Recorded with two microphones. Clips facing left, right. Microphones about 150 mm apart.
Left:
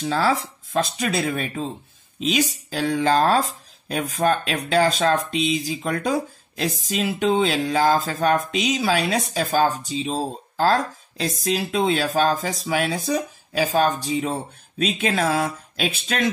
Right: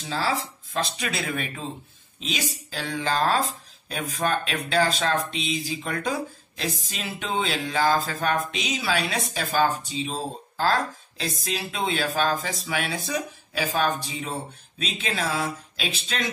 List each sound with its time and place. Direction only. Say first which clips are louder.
0.7 s speech: left 6 dB; 45° left (ahead or behind)
6.6 s music: left 7 dB; 40° left (ahead or behind)
14.8 s speech: left 7 dB; 50° left (ahead or behind)